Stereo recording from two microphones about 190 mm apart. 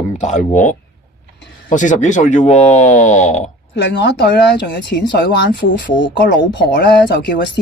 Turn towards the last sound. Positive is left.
turn(degrees=60)  # may be behind; listen again after turning